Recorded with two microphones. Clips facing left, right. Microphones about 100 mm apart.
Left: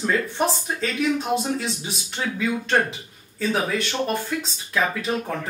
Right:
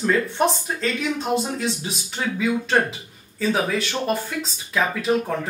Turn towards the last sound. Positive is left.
turn(degrees=0)  # may be behind; listen again after turning